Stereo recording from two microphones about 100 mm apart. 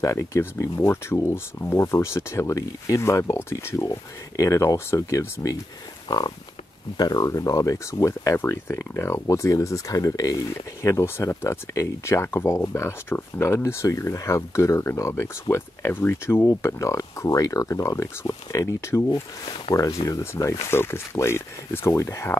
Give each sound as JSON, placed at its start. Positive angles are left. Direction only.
{"t": 0.0, "sound": "speech", "side_deg": 30}
{"t": 6.0, "sound": "pig", "side_deg": 40}
{"t": 7.0, "sound": "speech", "side_deg": 40}